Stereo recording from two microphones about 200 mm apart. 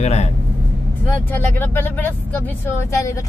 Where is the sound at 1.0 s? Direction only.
10° left (ahead or behind).